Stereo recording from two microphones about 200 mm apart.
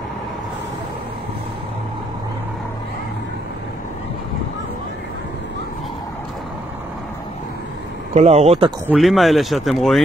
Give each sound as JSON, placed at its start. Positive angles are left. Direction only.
{"t": 8.1, "sound": "speech", "side_deg": -30}
{"t": 8.8, "sound": "speech", "side_deg": 0}